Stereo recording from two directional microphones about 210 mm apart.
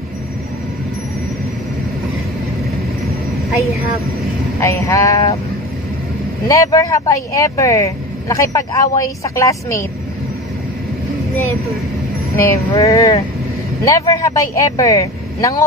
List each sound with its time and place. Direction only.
4.6 s speech: 15° left (ahead or behind)
6.4 s speech: 15° left (ahead or behind)
12.6 s speech: 15° left (ahead or behind)